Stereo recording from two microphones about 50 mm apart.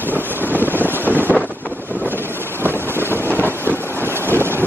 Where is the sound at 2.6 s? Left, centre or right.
Right.